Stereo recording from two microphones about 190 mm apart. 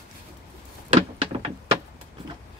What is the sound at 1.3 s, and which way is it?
Door, 30° right (ahead or behind).